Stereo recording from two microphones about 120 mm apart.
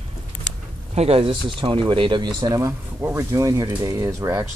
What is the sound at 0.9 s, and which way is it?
Speech, 55° right (ahead or behind).